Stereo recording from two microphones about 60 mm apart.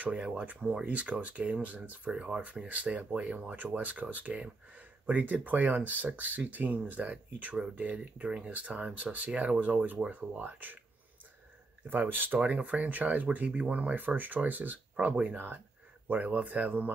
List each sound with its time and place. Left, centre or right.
0.0 s speech: right
11.9 s speech: right